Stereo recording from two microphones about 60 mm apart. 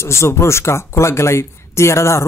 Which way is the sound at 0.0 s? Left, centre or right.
Left.